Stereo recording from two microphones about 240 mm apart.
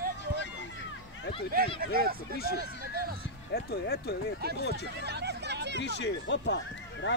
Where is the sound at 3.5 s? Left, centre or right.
Left.